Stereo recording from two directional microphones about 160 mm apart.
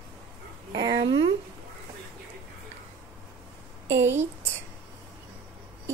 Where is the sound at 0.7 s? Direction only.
25° right (ahead or behind).